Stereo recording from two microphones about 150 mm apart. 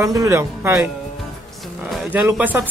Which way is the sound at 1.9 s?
10° right (ahead or behind).